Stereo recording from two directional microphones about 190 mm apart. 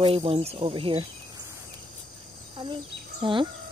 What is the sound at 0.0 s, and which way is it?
Speech, 30° right (ahead or behind).